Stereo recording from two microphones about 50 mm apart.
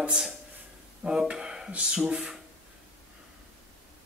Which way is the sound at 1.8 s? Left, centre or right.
Centre.